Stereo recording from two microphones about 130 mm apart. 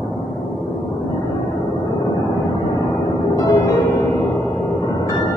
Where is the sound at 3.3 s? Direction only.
30° left (ahead or behind).